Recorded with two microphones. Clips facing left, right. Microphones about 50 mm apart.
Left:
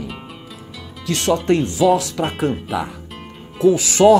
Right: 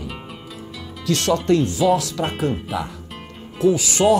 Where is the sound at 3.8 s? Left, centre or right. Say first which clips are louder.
Left 5 dB; left.